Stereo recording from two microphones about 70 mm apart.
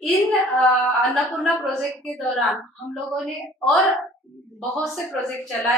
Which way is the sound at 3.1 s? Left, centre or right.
Centre.